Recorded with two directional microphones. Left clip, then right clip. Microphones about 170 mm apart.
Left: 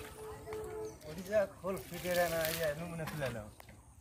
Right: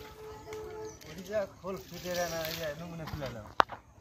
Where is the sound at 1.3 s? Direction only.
10° left (ahead or behind).